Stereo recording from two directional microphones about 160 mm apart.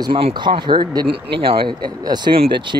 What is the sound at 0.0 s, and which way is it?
Speech, 30° right (ahead or behind).